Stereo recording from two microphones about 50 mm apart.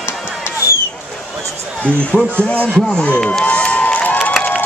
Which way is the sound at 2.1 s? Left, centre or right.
Left.